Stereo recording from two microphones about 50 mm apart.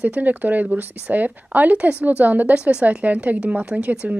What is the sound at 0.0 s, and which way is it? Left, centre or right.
Speech, right.